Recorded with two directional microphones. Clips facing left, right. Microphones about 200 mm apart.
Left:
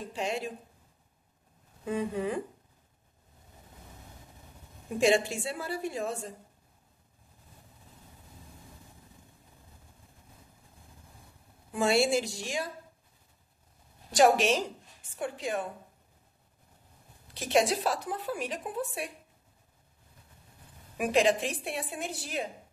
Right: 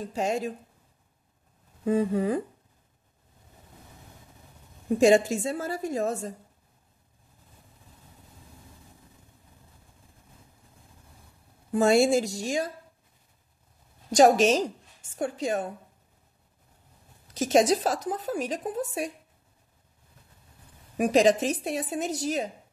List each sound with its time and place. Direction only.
0.0 s a woman's voice: 40° right (ahead or behind)
1.9 s a woman's voice: 40° right (ahead or behind)
4.9 s a woman's voice: 40° right (ahead or behind)
11.7 s a woman's voice: 40° right (ahead or behind)
14.1 s a woman's voice: 45° right (ahead or behind)
17.3 s a woman's voice: 45° right (ahead or behind)
21.0 s a woman's voice: 40° right (ahead or behind)